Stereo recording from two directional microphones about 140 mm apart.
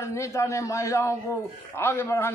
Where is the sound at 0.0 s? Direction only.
20° left (ahead or behind).